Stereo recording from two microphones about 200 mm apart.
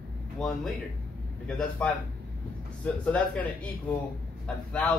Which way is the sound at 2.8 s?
5° left (ahead or behind).